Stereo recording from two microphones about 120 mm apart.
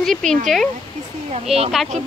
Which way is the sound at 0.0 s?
5° left (ahead or behind).